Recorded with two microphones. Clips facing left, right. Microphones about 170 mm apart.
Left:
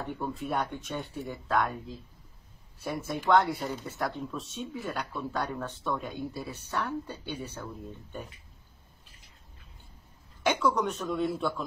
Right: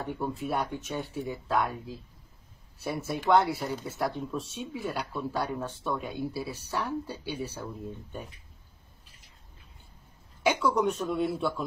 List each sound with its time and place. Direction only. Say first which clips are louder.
0.0 s speech: right 2 dB; 5° right (ahead or behind)
2.8 s speech: right 1 dB; 10° right (ahead or behind)
10.4 s speech: right 1 dB; 10° right (ahead or behind)